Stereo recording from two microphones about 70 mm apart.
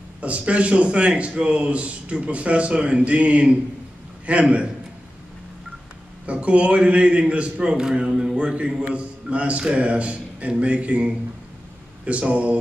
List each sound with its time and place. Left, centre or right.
0.2 s a man's voice: centre
6.2 s a man's voice: centre